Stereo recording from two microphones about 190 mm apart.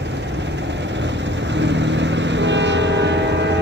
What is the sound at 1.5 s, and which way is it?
Train, 70° right (ahead or behind).